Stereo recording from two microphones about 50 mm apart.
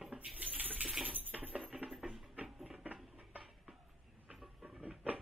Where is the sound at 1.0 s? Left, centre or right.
Right.